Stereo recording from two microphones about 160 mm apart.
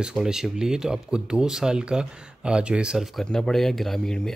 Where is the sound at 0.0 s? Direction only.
5° right (ahead or behind).